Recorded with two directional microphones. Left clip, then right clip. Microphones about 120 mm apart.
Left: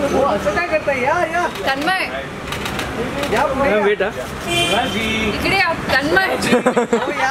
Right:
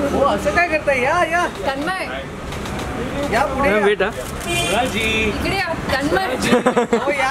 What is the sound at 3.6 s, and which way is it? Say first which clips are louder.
Speech: right 1 dB; 45° right (ahead or behind).